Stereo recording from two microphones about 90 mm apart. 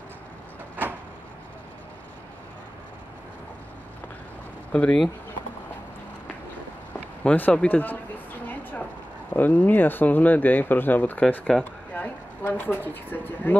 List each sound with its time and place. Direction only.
4.7 s speech: 15° left (ahead or behind)
7.2 s speech: 15° left (ahead or behind)
8.5 s a sound: 20° left (ahead or behind)
9.3 s speech: 15° left (ahead or behind)